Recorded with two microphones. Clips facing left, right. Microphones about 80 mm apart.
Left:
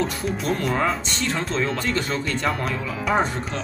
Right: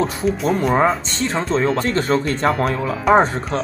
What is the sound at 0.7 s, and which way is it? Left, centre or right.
Speech, right.